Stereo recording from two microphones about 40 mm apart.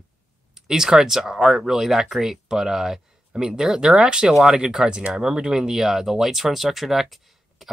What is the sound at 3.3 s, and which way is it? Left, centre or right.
Speech, right.